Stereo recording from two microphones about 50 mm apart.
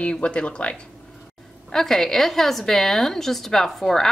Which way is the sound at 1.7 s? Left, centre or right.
Centre.